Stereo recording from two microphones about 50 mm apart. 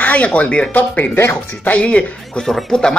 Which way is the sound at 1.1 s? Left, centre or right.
Left.